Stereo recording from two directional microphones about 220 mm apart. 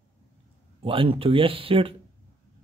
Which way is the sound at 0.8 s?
25° right (ahead or behind).